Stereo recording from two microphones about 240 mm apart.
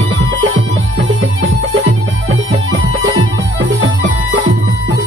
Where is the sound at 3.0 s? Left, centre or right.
Right.